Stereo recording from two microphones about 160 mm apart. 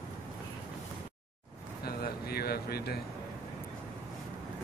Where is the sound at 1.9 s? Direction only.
75° left (ahead or behind).